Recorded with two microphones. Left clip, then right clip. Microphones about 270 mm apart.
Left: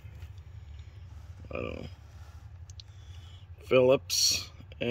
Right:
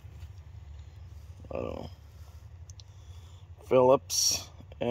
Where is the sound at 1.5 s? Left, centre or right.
Right.